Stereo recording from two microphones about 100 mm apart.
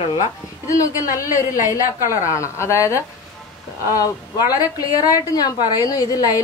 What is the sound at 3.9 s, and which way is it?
A woman's voice, 40° left (ahead or behind).